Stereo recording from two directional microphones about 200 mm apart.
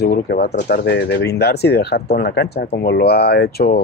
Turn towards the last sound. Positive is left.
turn(degrees=55)  # may be behind; listen again after turning